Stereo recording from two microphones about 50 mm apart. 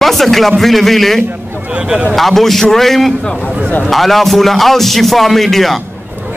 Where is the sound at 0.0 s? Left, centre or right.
Centre.